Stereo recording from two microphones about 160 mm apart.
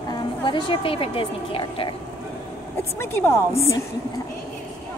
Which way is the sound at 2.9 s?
15° left (ahead or behind).